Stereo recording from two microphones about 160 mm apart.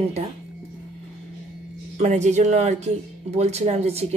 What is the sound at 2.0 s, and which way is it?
Speech, 45° right (ahead or behind).